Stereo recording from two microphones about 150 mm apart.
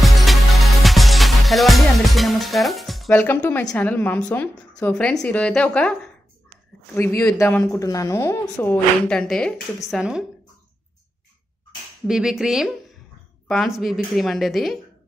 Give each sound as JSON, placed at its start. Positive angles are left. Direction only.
{"t": 0.0, "sound": "music", "side_deg": 0}
{"t": 3.1, "sound": "a woman's voice", "side_deg": 15}
{"t": 9.8, "sound": "a woman's voice", "side_deg": -5}
{"t": 12.1, "sound": "a woman's voice", "side_deg": -5}